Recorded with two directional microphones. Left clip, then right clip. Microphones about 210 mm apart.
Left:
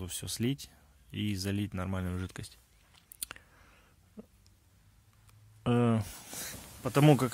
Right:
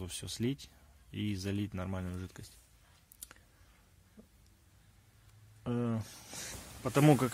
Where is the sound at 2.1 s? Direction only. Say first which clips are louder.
Left 6 dB; 35° left (ahead or behind).